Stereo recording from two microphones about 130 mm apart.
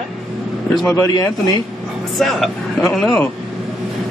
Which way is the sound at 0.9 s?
30° left (ahead or behind).